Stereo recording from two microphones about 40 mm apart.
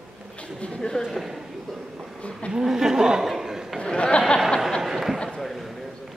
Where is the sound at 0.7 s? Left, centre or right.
Centre.